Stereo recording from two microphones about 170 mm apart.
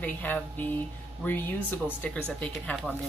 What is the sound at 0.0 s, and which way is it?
Speech, 10° left (ahead or behind).